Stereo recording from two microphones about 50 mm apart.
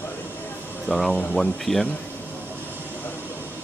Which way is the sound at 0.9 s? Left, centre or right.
Left.